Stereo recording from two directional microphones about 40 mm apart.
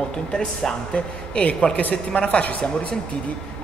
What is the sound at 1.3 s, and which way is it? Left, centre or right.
Speech, left.